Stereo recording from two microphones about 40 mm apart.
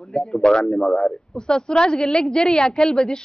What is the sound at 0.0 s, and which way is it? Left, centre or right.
Speech, centre.